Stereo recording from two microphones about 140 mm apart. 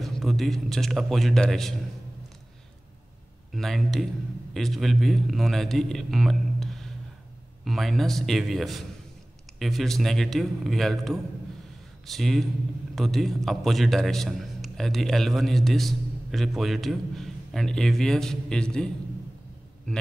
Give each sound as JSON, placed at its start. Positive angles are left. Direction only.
{"t": 0.0, "sound": "a man's voice", "side_deg": 0}
{"t": 3.5, "sound": "a man's voice", "side_deg": 0}